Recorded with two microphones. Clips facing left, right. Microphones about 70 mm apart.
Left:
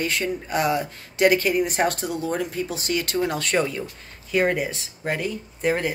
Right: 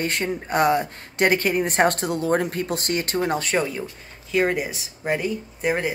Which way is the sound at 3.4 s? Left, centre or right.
Centre.